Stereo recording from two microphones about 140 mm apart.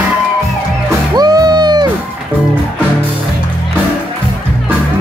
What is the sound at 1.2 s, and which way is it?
Music, 30° right (ahead or behind).